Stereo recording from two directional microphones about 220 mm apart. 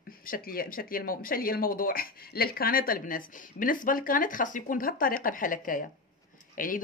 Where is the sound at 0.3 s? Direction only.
40° left (ahead or behind).